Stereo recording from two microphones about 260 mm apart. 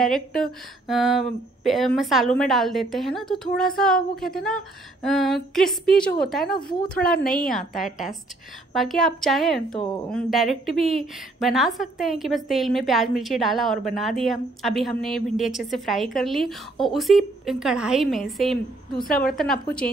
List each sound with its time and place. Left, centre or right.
0.0 s a woman's voice: centre
6.4 s a woman's voice: left
7.5 s a woman's voice: centre
19.0 s a woman's voice: left
19.3 s a woman's voice: centre